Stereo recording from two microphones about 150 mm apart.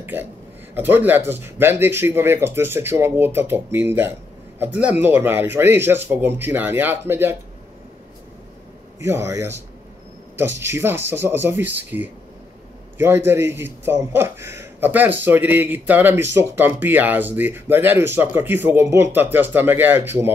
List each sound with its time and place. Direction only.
0.0 s a man's voice: 15° right (ahead or behind)
9.0 s a man's voice: 20° right (ahead or behind)